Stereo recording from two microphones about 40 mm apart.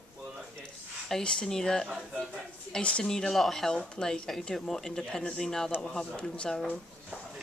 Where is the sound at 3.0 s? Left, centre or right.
Centre.